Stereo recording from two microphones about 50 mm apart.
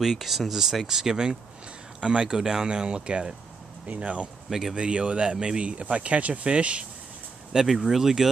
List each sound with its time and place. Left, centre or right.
0.0 s speech: centre; by 4.3 s right
4.5 s speech: centre
4.7 s speech: centre
7.5 s speech: centre